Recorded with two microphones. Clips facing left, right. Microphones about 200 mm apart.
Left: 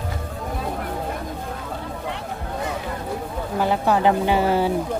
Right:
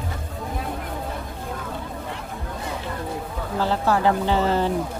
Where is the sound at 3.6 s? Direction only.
15° left (ahead or behind).